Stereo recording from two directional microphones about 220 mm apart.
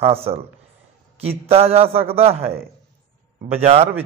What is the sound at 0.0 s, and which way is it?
Speech, 25° right (ahead or behind).